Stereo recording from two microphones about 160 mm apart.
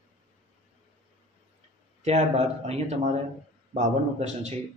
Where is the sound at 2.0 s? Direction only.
40° right (ahead or behind).